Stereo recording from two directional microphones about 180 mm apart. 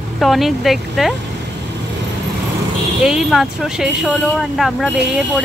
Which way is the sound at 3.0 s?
5° right (ahead or behind).